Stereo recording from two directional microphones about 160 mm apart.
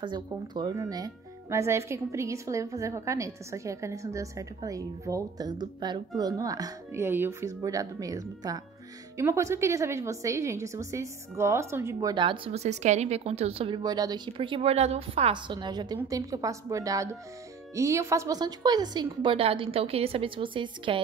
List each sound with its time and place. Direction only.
0.0 s a woman's voice: 30° right (ahead or behind)